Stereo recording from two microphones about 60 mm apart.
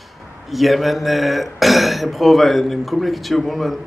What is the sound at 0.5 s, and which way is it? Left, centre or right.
Speech, centre.